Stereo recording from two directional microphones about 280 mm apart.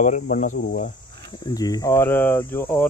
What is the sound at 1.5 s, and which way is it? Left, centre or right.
Speech, centre.